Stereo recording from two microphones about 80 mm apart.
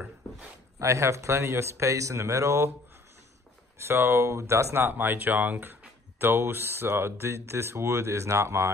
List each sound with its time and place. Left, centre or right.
0.7 s speech: right
3.7 s speech: right
4.8 s speech: right